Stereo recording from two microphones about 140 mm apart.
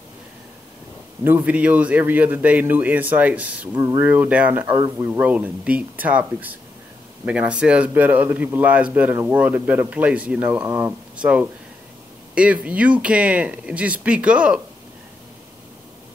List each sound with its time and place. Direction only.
1.2 s a man's voice: 15° right (ahead or behind)
3.7 s speech: 25° right (ahead or behind)
4.0 s a man's voice: 10° right (ahead or behind)
10.6 s speech: 25° right (ahead or behind)
10.9 s a man's voice: 10° right (ahead or behind)